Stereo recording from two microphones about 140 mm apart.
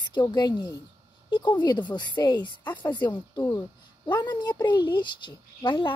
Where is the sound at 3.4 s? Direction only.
15° left (ahead or behind).